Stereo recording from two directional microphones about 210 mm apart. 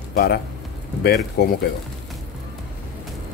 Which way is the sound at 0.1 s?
50° left (ahead or behind).